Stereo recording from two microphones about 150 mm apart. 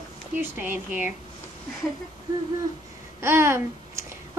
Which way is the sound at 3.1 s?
15° right (ahead or behind).